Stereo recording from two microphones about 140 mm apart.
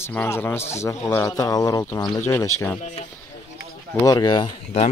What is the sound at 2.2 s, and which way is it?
Speech, 15° left (ahead or behind).